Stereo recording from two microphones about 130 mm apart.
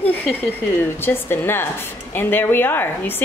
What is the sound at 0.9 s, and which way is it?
A woman's voice, 15° left (ahead or behind).